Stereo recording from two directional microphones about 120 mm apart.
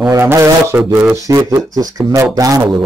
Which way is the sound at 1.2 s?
30° right (ahead or behind).